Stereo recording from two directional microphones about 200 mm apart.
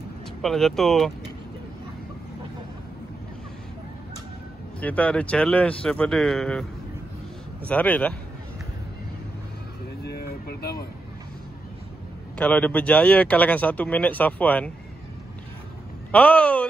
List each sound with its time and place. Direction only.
0.4 s speech: centre (ahead or behind)
4.7 s speech: 5° left (ahead or behind)
7.6 s speech: 5° left (ahead or behind)
10.0 s vehicle: 50° left (ahead or behind)
12.4 s speech: 5° left (ahead or behind)
16.1 s speech: 5° left (ahead or behind)